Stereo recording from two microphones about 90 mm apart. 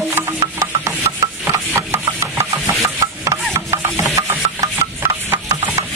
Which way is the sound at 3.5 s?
30° right (ahead or behind).